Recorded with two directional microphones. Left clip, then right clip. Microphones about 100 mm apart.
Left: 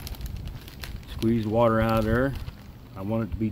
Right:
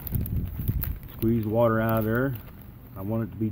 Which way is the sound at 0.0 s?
55° right (ahead or behind).